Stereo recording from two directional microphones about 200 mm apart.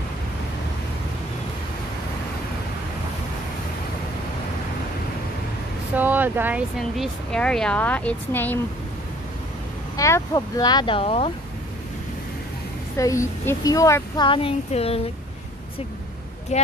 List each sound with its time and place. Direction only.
5.9 s speech: 10° right (ahead or behind)
6.8 s speech: centre (ahead or behind)
9.9 s speech: 15° left (ahead or behind)
12.9 s a woman's voice: 15° left (ahead or behind)
16.5 s speech: 35° left (ahead or behind)